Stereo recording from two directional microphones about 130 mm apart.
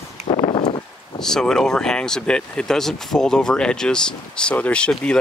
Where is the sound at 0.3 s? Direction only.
40° left (ahead or behind).